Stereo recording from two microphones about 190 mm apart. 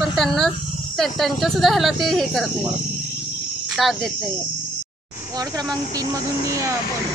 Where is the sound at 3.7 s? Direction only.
Centre (ahead or behind).